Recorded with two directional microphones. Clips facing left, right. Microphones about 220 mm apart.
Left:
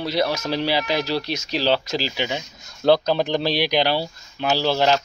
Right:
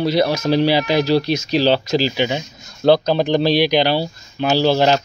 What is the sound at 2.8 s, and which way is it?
Speech, 20° right (ahead or behind).